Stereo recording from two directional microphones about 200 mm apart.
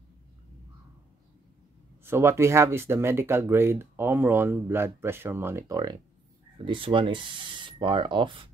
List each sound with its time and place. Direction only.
2.0 s speech: 15° right (ahead or behind)